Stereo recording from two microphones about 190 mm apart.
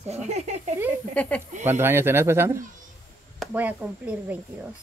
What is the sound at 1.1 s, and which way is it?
Speech, 5° left (ahead or behind).